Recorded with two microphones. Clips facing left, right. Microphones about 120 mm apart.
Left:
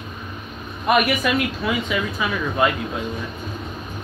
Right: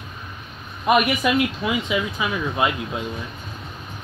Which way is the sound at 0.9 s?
15° right (ahead or behind).